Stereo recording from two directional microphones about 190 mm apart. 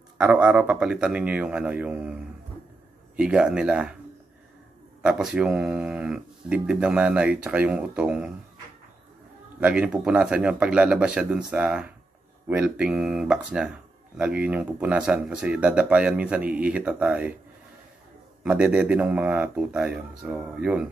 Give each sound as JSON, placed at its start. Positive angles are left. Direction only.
{"t": 0.2, "sound": "speech", "side_deg": -5}
{"t": 3.2, "sound": "speech", "side_deg": -5}
{"t": 5.0, "sound": "speech", "side_deg": -5}
{"t": 9.6, "sound": "speech", "side_deg": -5}
{"t": 18.4, "sound": "speech", "side_deg": -5}